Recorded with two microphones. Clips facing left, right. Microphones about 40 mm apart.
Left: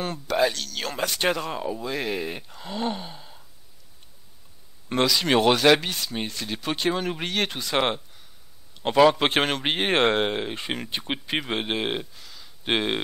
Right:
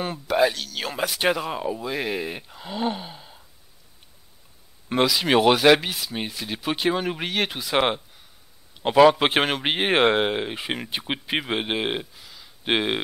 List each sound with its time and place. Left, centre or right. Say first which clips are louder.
0.0 s speech: right 2 dB; centre
4.8 s speech: right 1 dB; centre